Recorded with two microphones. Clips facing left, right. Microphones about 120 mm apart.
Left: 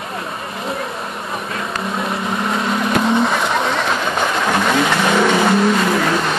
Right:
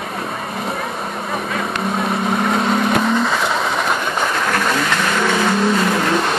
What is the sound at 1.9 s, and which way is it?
Vehicle, centre (ahead or behind).